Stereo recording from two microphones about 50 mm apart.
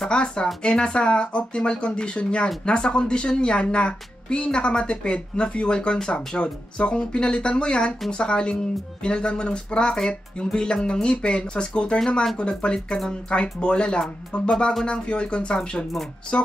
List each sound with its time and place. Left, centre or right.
0.0 s a woman's voice: left